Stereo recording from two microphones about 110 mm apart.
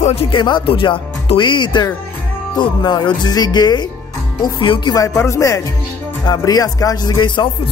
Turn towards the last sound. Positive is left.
turn(degrees=45)  # may be behind; listen again after turning